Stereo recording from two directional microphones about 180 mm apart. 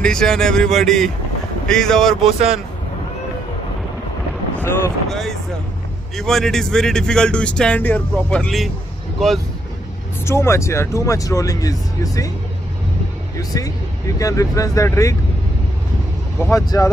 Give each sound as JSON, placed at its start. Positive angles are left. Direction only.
{"t": 0.0, "sound": "speech", "side_deg": 5}
{"t": 5.0, "sound": "a sound", "side_deg": 0}
{"t": 6.1, "sound": "speech", "side_deg": 5}
{"t": 10.2, "sound": "speech", "side_deg": 15}
{"t": 13.4, "sound": "speech", "side_deg": 20}
{"t": 16.3, "sound": "speech", "side_deg": 15}